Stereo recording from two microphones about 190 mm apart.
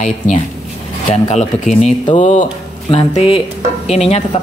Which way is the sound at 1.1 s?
35° left (ahead or behind).